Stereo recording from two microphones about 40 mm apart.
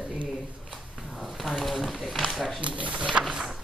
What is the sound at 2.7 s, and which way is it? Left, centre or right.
Speech, right.